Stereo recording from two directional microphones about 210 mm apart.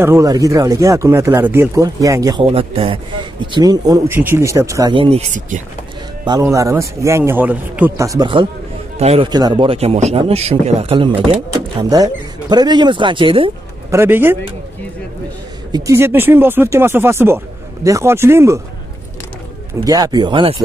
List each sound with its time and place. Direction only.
0.0 s speech: 15° right (ahead or behind)
6.5 s speech: 15° right (ahead or behind)
13.8 s speech: 10° right (ahead or behind)
15.7 s speech: 10° right (ahead or behind)
19.8 s speech: 15° right (ahead or behind)